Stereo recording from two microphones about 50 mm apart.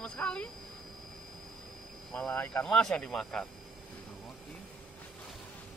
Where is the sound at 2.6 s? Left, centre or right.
Centre.